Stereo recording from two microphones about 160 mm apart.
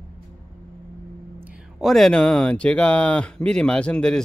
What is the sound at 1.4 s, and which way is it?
Speech, 5° right (ahead or behind).